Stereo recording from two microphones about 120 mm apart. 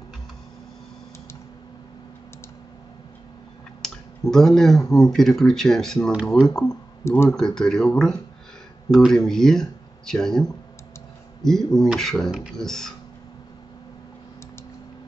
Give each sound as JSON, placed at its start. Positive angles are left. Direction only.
{"t": 3.8, "sound": "clicking", "side_deg": 5}
{"t": 4.9, "sound": "speech", "side_deg": 5}
{"t": 6.7, "sound": "speech", "side_deg": 20}
{"t": 7.2, "sound": "speech", "side_deg": 5}